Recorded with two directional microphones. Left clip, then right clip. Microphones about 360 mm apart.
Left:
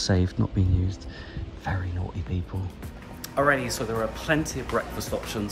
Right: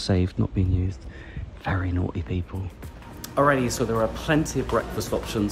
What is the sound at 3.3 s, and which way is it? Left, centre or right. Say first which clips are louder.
Speech: right 2 dB; centre.